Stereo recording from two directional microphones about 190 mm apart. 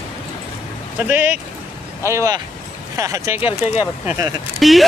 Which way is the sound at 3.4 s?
30° left (ahead or behind).